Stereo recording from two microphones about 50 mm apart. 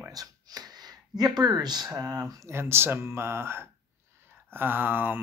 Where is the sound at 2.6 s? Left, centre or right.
Right.